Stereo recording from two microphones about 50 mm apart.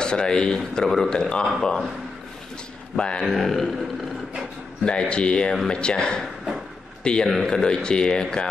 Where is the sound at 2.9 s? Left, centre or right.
Centre.